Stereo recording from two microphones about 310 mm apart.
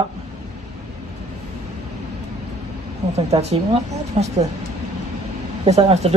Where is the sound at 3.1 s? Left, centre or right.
Centre.